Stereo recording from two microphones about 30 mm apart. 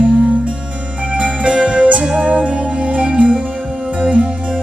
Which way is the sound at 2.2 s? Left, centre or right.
Right.